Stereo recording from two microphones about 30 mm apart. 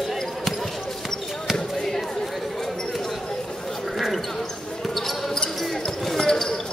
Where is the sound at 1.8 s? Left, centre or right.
Centre.